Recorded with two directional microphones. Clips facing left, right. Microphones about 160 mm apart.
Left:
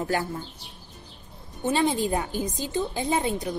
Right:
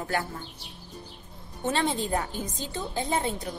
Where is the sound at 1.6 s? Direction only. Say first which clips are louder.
Left 4 dB; 15° left (ahead or behind).